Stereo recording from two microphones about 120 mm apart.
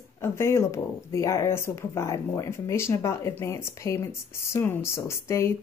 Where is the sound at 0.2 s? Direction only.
20° left (ahead or behind).